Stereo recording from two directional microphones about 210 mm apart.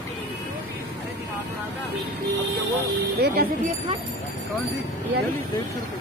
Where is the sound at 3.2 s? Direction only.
50° right (ahead or behind).